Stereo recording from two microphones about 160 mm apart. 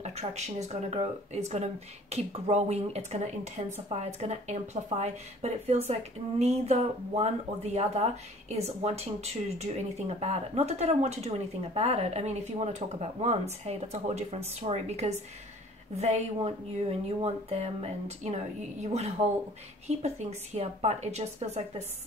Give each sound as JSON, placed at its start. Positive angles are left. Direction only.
{"t": 0.0, "sound": "speech", "side_deg": -40}